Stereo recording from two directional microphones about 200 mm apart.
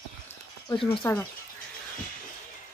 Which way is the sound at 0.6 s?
25° left (ahead or behind).